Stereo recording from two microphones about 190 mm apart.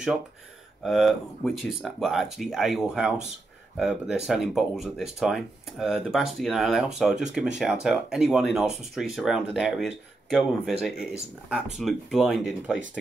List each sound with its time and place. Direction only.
0.8 s speech: centre (ahead or behind)